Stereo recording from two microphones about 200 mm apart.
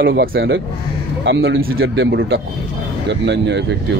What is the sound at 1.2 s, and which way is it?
Speech, 65° right (ahead or behind).